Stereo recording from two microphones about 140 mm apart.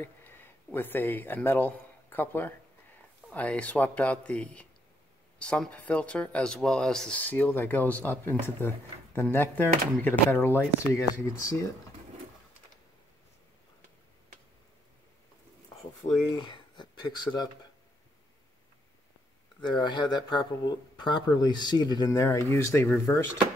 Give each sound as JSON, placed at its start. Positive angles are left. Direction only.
{"t": 0.0, "sound": "speech", "side_deg": 15}
{"t": 16.0, "sound": "speech", "side_deg": 30}
{"t": 19.6, "sound": "speech", "side_deg": 35}